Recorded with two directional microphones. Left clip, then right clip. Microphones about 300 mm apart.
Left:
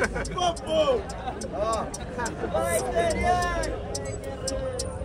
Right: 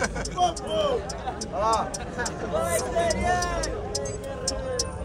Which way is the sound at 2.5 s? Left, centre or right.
Right.